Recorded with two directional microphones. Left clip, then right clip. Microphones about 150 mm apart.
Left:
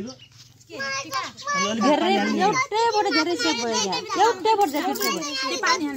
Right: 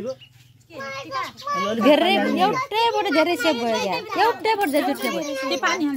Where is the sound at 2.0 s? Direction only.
Centre (ahead or behind).